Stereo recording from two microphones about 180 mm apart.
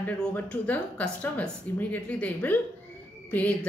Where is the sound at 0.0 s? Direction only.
10° left (ahead or behind).